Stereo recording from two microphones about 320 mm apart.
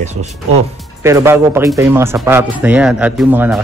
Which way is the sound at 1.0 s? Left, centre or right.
Centre.